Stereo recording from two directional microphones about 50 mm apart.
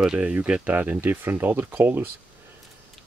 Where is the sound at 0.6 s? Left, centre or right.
Right.